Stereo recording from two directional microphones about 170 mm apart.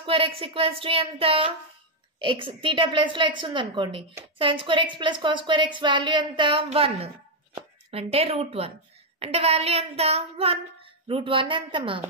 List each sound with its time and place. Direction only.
0.0 s child singing: 30° right (ahead or behind)
2.1 s a woman's voice: 30° right (ahead or behind)
9.2 s child singing: 35° right (ahead or behind)